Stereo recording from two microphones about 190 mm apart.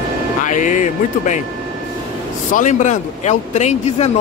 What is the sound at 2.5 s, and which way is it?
Speech, 40° left (ahead or behind).